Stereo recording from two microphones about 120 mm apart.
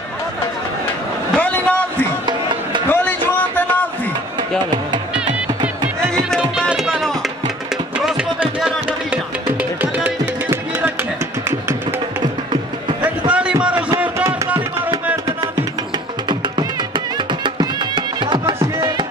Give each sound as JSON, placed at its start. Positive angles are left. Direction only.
{"t": 1.3, "sound": "a sound", "side_deg": 10}
{"t": 4.4, "sound": "music", "side_deg": -40}
{"t": 6.3, "sound": "music", "side_deg": 5}
{"t": 13.3, "sound": "a sound", "side_deg": -10}
{"t": 14.1, "sound": "music", "side_deg": -25}
{"t": 17.3, "sound": "music", "side_deg": -40}